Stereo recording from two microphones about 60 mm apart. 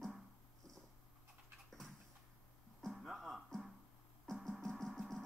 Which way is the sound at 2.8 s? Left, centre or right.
Centre.